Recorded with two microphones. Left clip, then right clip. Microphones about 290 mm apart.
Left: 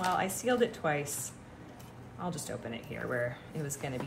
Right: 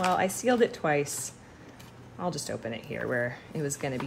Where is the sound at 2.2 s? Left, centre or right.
Right.